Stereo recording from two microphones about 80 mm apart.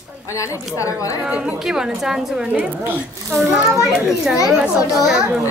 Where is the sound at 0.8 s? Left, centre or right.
Left.